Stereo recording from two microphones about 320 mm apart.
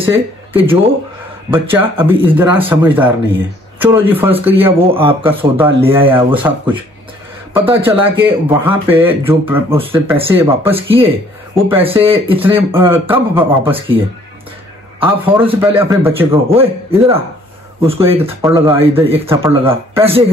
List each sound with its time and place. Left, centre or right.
0.0 s speech: centre
4.7 s speech: centre
10.8 s speech: centre
15.0 s speech: centre
19.0 s speech: centre